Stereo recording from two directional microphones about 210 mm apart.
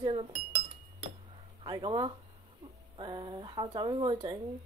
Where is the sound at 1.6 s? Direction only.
20° right (ahead or behind).